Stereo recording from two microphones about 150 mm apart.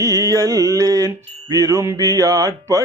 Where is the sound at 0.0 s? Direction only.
20° right (ahead or behind).